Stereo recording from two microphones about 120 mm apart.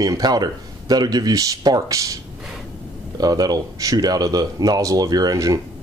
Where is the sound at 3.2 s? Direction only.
35° right (ahead or behind).